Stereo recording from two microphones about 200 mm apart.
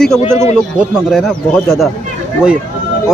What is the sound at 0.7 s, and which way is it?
A man's voice, centre (ahead or behind).